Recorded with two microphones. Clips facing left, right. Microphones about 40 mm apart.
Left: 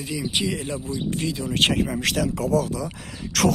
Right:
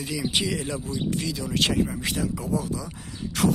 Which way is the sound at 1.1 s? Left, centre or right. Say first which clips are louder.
Left 3 dB; left.